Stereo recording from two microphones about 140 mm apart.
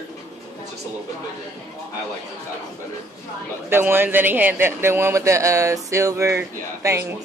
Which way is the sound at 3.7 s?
15° right (ahead or behind).